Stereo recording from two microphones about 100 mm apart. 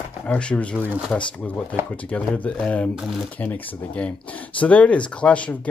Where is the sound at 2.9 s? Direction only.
5° right (ahead or behind).